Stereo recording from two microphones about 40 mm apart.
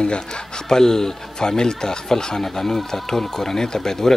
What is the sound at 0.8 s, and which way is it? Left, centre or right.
Speech, centre.